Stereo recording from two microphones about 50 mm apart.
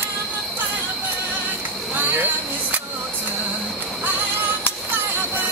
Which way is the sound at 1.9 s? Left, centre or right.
Right.